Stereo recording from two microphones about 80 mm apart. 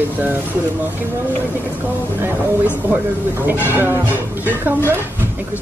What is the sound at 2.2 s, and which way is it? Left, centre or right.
Speech, right.